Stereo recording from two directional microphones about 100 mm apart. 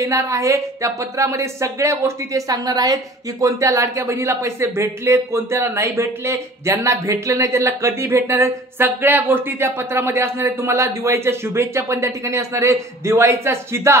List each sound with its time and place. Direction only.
0.0 s a woman's voice: 30° right (ahead or behind)